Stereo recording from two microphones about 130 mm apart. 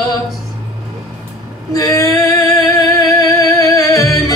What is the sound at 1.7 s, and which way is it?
Singing, 25° left (ahead or behind).